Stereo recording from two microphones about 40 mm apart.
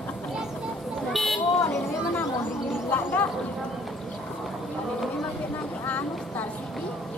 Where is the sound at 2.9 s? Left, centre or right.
Left.